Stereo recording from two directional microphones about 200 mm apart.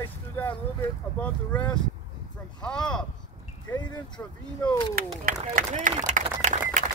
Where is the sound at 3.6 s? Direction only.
20° left (ahead or behind).